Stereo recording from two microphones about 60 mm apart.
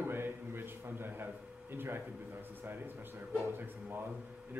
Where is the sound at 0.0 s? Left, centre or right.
Right.